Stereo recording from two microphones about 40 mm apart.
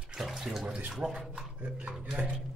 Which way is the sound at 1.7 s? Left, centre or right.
Right.